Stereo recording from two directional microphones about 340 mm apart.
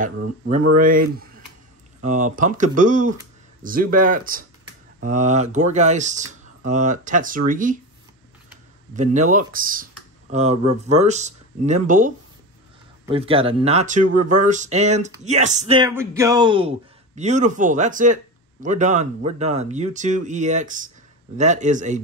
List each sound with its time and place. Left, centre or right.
0.0 s speech: right
8.9 s speech: right
13.1 s speech: centre